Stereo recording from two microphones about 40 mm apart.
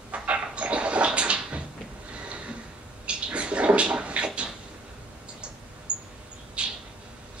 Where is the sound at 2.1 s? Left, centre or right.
Right.